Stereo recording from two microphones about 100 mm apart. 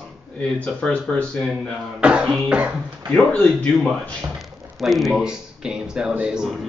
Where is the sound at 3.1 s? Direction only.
15° left (ahead or behind); by 6.7 s centre (ahead or behind).